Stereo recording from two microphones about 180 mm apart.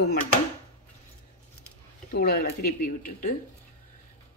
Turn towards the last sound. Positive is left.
turn(degrees=55)  # may be behind; listen again after turning